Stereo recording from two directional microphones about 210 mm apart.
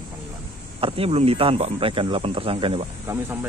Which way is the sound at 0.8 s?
25° right (ahead or behind).